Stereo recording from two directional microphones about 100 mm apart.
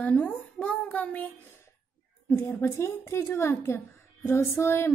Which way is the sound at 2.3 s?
25° left (ahead or behind).